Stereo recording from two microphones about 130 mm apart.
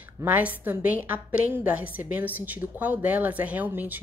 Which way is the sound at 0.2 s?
15° right (ahead or behind).